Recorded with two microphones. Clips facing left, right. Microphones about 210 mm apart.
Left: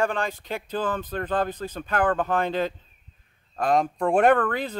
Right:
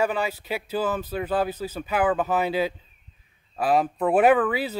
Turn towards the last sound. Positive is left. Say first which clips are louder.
# right 1 dB
turn(degrees=-5)  # may be behind; listen again after turning